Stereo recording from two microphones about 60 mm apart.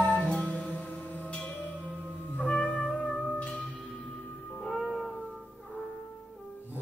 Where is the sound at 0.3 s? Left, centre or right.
Centre.